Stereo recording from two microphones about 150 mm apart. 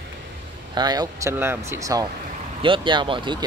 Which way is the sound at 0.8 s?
25° right (ahead or behind).